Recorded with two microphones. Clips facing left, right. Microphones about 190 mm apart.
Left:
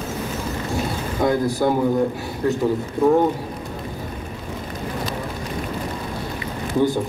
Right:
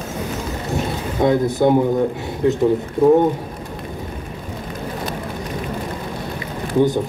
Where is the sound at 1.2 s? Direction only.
20° right (ahead or behind).